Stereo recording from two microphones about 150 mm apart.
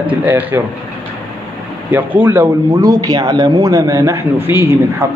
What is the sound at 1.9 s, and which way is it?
Speech, 10° right (ahead or behind).